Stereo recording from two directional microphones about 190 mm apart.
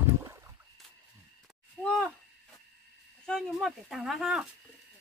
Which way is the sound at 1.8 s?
Centre (ahead or behind).